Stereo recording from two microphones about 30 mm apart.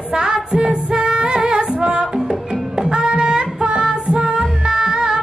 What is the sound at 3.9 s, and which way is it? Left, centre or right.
Music, right.